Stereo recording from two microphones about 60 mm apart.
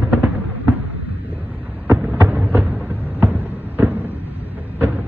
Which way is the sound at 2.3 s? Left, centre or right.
Right.